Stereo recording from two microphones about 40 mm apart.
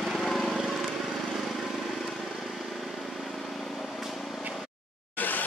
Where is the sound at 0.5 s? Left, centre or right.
Centre.